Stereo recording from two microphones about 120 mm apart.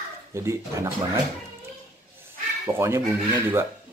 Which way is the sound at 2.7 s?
20° right (ahead or behind).